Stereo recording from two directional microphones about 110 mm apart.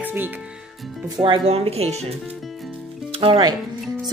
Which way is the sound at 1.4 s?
65° right (ahead or behind).